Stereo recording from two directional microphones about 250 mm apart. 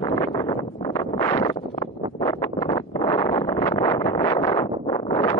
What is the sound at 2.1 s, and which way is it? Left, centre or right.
Wind noise, centre.